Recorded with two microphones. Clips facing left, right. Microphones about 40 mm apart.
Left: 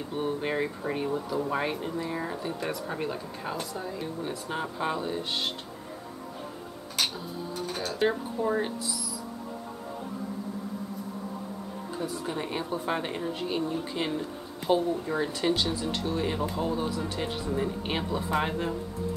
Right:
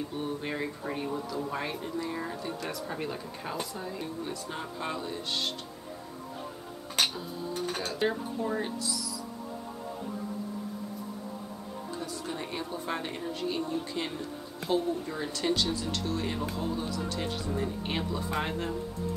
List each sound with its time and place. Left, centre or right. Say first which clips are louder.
0.1 s speech: left 4 dB; left
7.6 s speech: left 1 dB; centre
8.1 s speech: left 4 dB; centre
12.0 s speech: left 6 dB; centre